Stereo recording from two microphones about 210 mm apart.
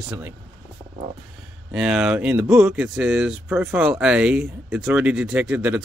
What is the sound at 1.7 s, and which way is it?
Speech, 5° right (ahead or behind).